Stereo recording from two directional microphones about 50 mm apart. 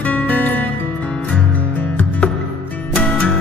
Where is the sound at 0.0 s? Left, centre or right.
Left.